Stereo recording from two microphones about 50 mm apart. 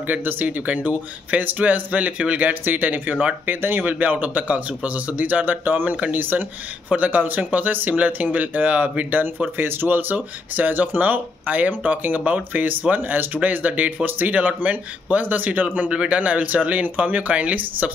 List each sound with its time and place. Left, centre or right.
0.0 s speech: right
2.6 s speech: right
9.6 s speech: right
12.9 s speech: right